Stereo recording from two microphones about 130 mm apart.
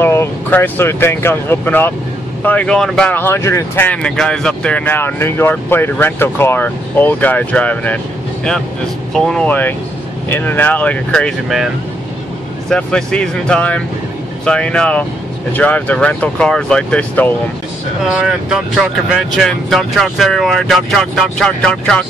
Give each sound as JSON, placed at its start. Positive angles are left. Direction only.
{"t": 0.0, "sound": "speech", "side_deg": 20}
{"t": 3.1, "sound": "speech", "side_deg": 15}
{"t": 9.1, "sound": "speech", "side_deg": 5}
{"t": 18.1, "sound": "speech", "side_deg": -5}